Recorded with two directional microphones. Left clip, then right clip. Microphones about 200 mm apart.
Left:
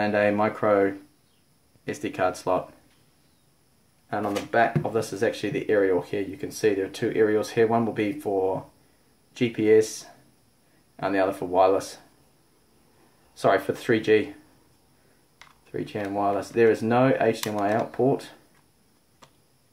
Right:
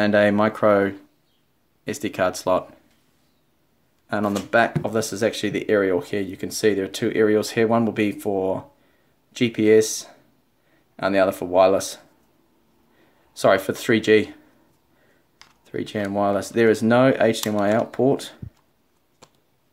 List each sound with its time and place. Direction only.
0.0 s speech: 45° right (ahead or behind)
4.1 s speech: 50° right (ahead or behind)
13.4 s speech: 45° right (ahead or behind)
15.7 s speech: 45° right (ahead or behind)